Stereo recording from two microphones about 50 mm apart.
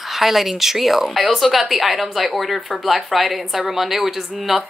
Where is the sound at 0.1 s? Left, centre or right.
Centre.